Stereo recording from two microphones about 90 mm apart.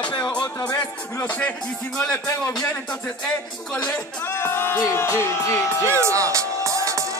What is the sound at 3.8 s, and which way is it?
Speech, 20° left (ahead or behind).